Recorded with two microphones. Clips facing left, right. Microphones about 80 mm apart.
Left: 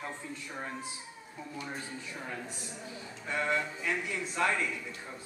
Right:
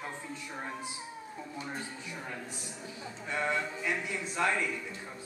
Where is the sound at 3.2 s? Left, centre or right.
Centre.